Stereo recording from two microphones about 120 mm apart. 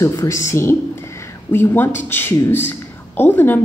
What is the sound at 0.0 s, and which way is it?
A woman's voice, 25° left (ahead or behind).